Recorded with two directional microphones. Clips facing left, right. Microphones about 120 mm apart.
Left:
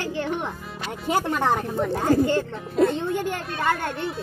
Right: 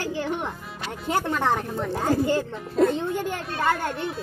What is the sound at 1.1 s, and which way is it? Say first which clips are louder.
Speech: left 1 dB; 10° left (ahead or behind).